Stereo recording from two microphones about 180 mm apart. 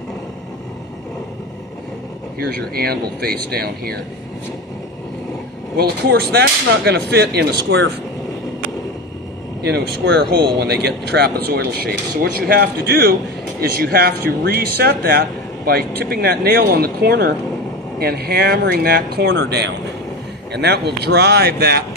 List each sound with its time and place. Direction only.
2.3 s speech: 55° right (ahead or behind)
5.8 s speech: 65° right (ahead or behind)
9.6 s speech: 65° right (ahead or behind)